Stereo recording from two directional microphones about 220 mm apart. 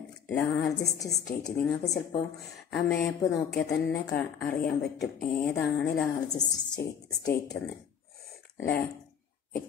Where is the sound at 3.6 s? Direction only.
5° left (ahead or behind).